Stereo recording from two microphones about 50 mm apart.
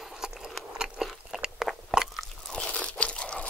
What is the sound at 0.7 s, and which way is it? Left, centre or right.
Biting, centre.